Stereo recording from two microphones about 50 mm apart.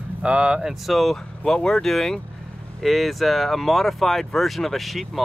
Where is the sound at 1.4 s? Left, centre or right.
Centre.